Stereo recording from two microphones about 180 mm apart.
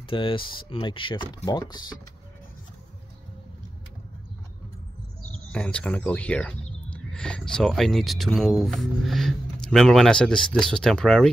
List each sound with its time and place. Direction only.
0.1 s speech: 30° left (ahead or behind)
5.5 s speech: 5° left (ahead or behind)